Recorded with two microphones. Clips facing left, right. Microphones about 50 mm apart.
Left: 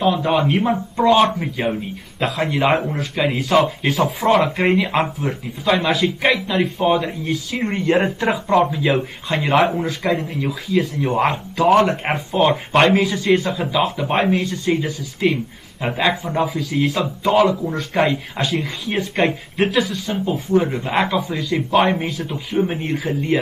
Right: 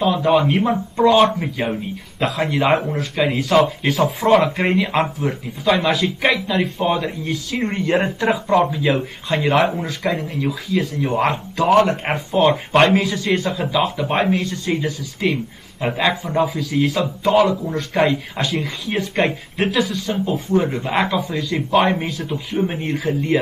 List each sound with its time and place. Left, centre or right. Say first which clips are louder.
0.0 s speech: right 1 dB; centre
11.7 s speech: right 1 dB; left
12.0 s speech: right 1 dB; centre